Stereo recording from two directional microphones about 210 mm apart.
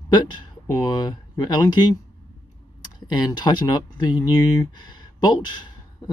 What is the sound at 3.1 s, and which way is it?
Speech, 20° left (ahead or behind).